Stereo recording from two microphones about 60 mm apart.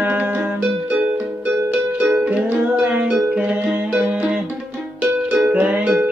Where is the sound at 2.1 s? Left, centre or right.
Right.